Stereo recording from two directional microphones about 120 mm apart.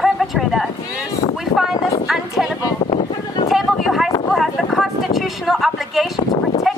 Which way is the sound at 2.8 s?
55° left (ahead or behind).